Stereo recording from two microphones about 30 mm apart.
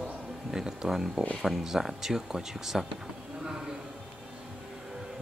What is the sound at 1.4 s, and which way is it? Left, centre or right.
Speech, centre.